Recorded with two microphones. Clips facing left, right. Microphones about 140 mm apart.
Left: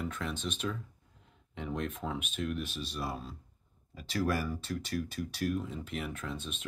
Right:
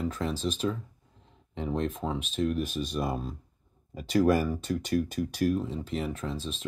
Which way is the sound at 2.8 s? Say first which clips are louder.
Right 7 dB; 45° right (ahead or behind).